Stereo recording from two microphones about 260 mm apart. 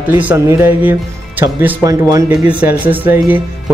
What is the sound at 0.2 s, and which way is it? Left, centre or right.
Speech, centre.